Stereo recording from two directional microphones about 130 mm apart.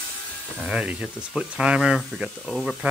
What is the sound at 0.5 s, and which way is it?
Speech, 5° right (ahead or behind).